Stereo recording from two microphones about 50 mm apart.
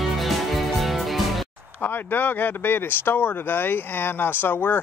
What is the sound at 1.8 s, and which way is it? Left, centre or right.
Speech, left.